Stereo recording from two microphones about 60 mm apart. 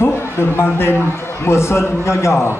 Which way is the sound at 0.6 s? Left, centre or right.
Left.